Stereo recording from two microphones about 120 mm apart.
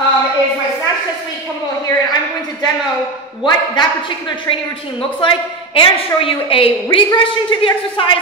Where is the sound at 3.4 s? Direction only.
40° left (ahead or behind).